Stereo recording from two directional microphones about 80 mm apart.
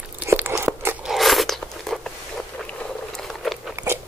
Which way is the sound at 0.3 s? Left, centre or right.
Right.